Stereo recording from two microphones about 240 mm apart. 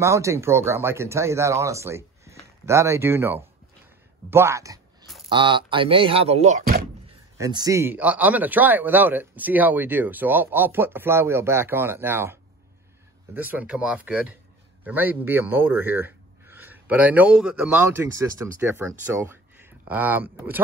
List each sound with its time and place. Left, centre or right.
0.0 s speech: centre
5.0 s a sound: centre
5.3 s speech: centre
7.3 s speech: centre